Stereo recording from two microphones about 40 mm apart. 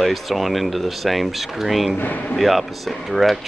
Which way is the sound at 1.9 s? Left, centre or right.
Left.